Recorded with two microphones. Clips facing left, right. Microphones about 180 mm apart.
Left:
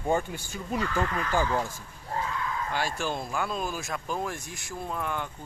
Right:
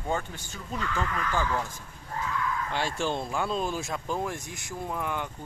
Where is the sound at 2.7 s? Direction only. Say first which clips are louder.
Right 1 dB; 25° right (ahead or behind).